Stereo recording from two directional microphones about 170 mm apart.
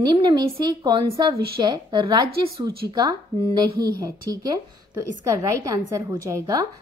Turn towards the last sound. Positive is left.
turn(degrees=-20)  # may be behind; listen again after turning